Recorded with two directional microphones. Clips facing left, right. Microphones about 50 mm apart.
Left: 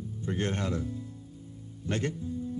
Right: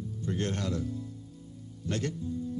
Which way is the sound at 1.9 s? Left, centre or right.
Left.